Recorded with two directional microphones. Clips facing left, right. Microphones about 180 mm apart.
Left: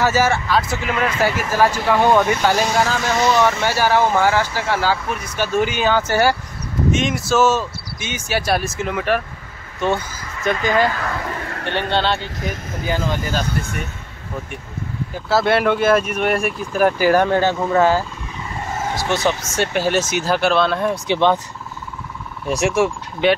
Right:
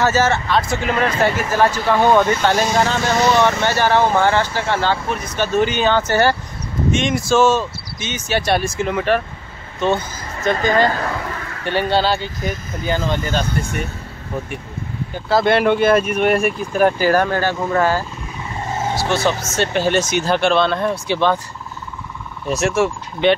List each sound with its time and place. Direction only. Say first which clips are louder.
0.0 s speech: right 1 dB; 10° left (ahead or behind)
0.7 s speech: right 3 dB; 35° right (ahead or behind)
1.2 s speech: even; 5° left (ahead or behind)
10.5 s speech: right 2 dB; 35° right (ahead or behind)
11.9 s speech: right 1 dB; 5° right (ahead or behind)
15.1 s speech: right 2 dB; 5° left (ahead or behind)
17.0 s speech: left 1 dB; 15° left (ahead or behind)
21.1 s speech: left 2 dB; 20° left (ahead or behind)
22.5 s speech: even; 15° left (ahead or behind)